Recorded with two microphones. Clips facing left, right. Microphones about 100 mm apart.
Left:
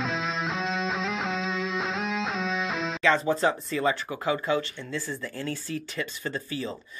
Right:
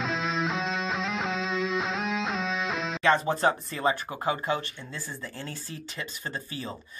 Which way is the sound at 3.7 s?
30° right (ahead or behind).